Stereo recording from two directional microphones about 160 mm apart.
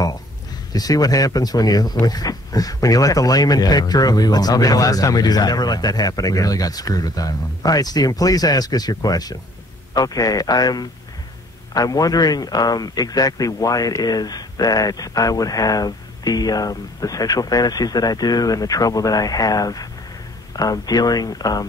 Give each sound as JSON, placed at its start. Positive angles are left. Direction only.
{"t": 0.7, "sound": "speech", "side_deg": 25}